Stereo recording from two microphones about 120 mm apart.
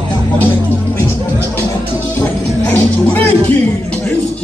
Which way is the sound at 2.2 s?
15° left (ahead or behind).